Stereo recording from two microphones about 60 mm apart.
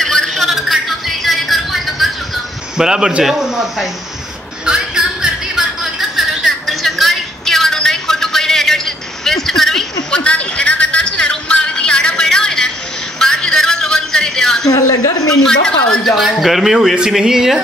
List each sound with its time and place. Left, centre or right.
0.0 s a sound: centre
2.8 s speech: centre
4.6 s music: centre
10.1 s music: centre
14.7 s a sound: left
15.2 s a woman's voice: centre
16.2 s speech: centre